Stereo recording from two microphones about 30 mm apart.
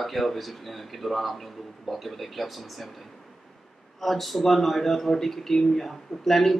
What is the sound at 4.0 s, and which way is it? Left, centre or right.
Speech, centre.